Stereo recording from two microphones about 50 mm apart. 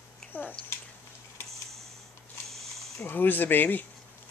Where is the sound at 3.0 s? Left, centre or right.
Left.